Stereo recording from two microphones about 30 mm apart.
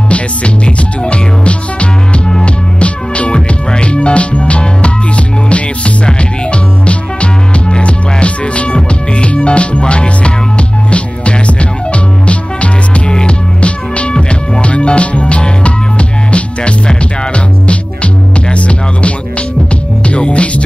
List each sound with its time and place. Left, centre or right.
0.1 s music: left